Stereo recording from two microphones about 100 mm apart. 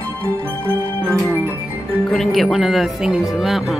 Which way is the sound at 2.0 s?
5° left (ahead or behind).